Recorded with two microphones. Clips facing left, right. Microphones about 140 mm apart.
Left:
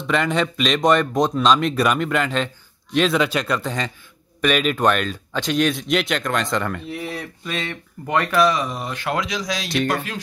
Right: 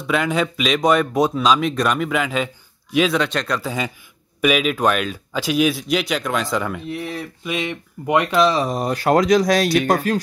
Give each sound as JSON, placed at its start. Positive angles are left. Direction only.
{"t": 0.0, "sound": "speech", "side_deg": -5}
{"t": 8.5, "sound": "speech", "side_deg": -35}
{"t": 10.1, "sound": "music", "side_deg": -40}